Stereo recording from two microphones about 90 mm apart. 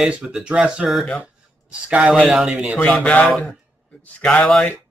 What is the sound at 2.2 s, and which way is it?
Speech, 10° right (ahead or behind).